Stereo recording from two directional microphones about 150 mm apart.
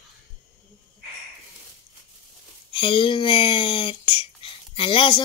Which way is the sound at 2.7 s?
35° left (ahead or behind).